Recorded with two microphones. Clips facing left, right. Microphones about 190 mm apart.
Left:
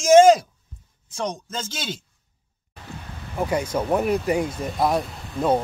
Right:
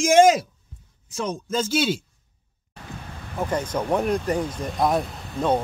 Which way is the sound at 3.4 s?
10° left (ahead or behind).